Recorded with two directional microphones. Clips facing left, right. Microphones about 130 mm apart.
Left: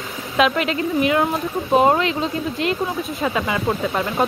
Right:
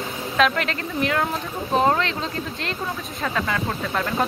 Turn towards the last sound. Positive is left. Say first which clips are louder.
# left 4 dB
turn(degrees=10)  # may be behind; listen again after turning